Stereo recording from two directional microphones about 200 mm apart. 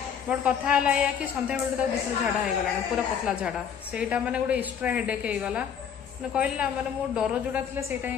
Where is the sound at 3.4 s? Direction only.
5° right (ahead or behind).